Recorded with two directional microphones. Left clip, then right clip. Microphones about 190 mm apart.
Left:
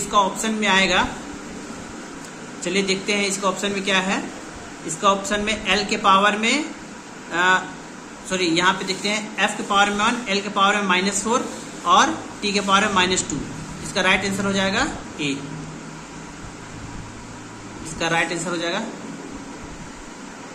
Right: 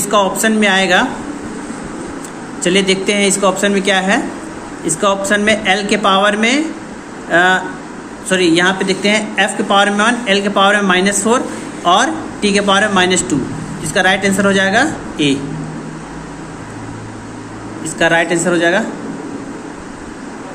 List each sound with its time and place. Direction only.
0.1 s speech: 20° right (ahead or behind)
2.6 s speech: 15° right (ahead or behind)
17.9 s speech: 15° right (ahead or behind)